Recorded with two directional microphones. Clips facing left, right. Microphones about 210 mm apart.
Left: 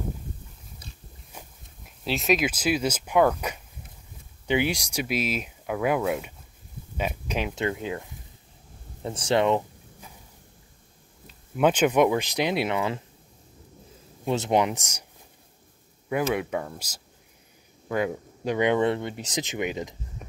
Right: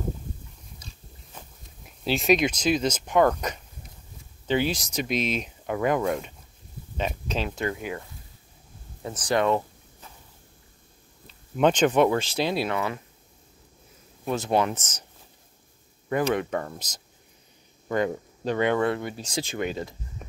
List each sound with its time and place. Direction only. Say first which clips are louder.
1.9 s speech: right 3 dB; centre (ahead or behind); by 8.0 s 25° left (ahead or behind)
9.0 s a sound: left 1 dB; 25° left (ahead or behind)
11.2 s speech: right 1 dB; 5° left (ahead or behind)
14.2 s speech: left 1 dB; 20° left (ahead or behind)
16.1 s speech: right 1 dB; 10° left (ahead or behind)